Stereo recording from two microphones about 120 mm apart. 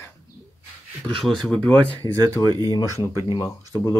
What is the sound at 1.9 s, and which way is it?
Speech, 20° left (ahead or behind).